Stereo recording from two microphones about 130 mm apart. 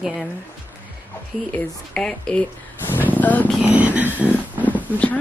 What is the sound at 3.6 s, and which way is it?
Speech, 10° right (ahead or behind).